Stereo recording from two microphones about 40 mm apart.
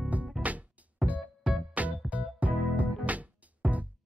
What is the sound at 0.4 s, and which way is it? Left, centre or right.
Music, right.